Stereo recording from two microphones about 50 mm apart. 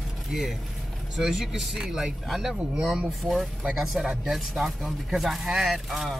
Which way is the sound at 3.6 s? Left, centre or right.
Centre.